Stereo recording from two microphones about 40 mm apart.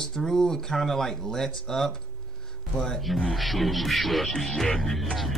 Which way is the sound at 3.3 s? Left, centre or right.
Centre.